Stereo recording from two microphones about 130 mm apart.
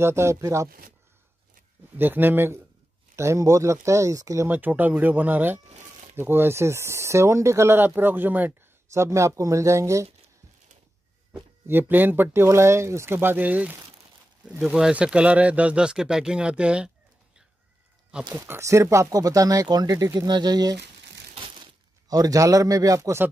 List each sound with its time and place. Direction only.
0.0 s speech: 20° right (ahead or behind)
2.0 s speech: 15° right (ahead or behind)
11.6 s speech: 15° right (ahead or behind)
18.3 s speech: 20° right (ahead or behind)
22.1 s speech: 25° right (ahead or behind)